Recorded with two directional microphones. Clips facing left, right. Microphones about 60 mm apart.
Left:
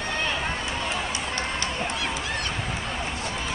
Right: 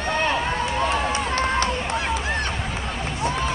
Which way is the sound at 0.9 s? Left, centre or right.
Right.